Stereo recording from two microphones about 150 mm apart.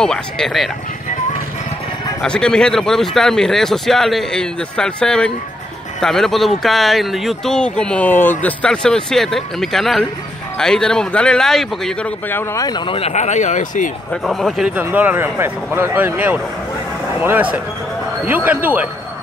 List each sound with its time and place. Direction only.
0.0 s speech: 5° left (ahead or behind)
2.2 s speech: 5° left (ahead or behind)
12.3 s speech: 15° left (ahead or behind)
12.6 s speech: 30° left (ahead or behind)
13.1 s speech: 50° left (ahead or behind)
14.1 s speech: centre (ahead or behind)
14.8 s speech: 10° right (ahead or behind)